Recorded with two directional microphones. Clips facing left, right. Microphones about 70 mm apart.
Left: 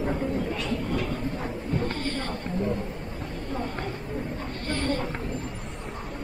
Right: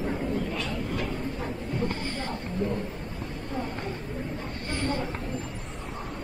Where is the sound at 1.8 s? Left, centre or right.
Centre.